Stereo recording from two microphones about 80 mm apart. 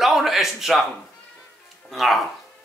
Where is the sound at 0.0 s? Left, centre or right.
Centre.